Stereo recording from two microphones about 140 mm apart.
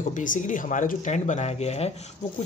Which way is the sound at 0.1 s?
65° left (ahead or behind).